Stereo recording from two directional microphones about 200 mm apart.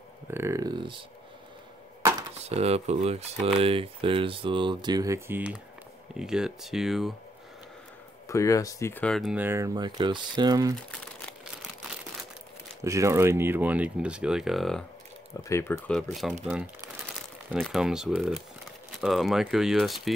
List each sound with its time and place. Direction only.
0.3 s speech: 15° right (ahead or behind)
2.5 s speech: 30° right (ahead or behind); by 7.2 s centre (ahead or behind)
8.3 s speech: 15° left (ahead or behind); by 10.7 s 20° right (ahead or behind)
12.8 s speech: 15° right (ahead or behind); by 14.9 s centre (ahead or behind)
15.4 s speech: 15° left (ahead or behind)
15.9 s speech: centre (ahead or behind)